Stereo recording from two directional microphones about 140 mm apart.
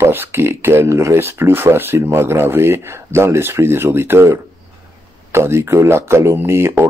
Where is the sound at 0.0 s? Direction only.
15° right (ahead or behind).